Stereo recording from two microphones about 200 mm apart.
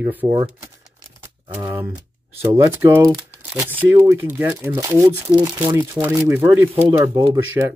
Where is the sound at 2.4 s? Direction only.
15° right (ahead or behind).